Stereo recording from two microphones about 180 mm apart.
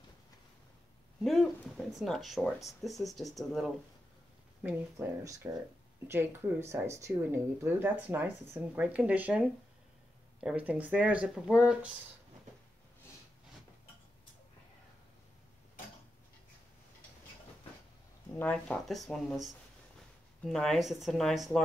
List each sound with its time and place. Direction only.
1.2 s speech: centre (ahead or behind)
4.6 s speech: 15° right (ahead or behind)
18.3 s speech: 5° left (ahead or behind)